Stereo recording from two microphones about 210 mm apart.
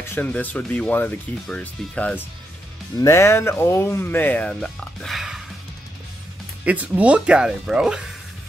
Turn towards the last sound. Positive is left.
turn(degrees=-5)  # may be behind; listen again after turning